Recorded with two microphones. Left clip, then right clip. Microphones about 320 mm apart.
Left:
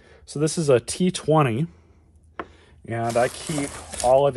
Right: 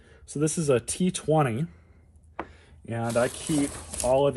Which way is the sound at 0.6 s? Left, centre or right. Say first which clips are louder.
Left 7 dB; left.